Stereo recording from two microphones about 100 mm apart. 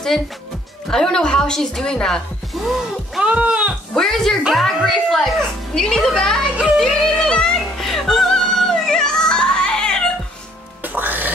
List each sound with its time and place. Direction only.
0.8 s a woman's voice: 5° left (ahead or behind); by 3.7 s 10° right (ahead or behind)
3.9 s a sound: 5° left (ahead or behind)
5.8 s a woman's voice: 5° left (ahead or behind)
6.8 s music: 5° left (ahead or behind)
10.8 s music: 20° right (ahead or behind)